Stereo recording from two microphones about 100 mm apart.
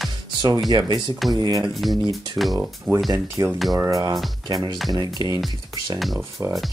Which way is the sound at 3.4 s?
35° right (ahead or behind).